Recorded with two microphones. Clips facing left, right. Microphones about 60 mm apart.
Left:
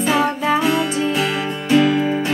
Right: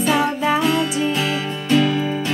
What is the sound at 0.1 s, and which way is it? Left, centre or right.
Music, centre.